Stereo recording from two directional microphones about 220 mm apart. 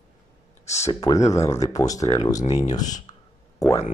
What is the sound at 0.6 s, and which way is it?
Speech, 30° left (ahead or behind).